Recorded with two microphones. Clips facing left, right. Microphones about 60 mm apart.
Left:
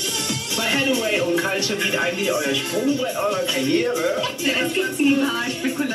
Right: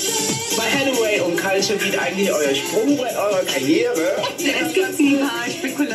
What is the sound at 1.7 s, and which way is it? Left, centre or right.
A woman's voice, centre.